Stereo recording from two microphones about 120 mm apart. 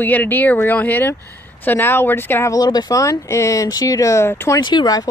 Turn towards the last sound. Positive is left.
turn(degrees=35)  # may be behind; listen again after turning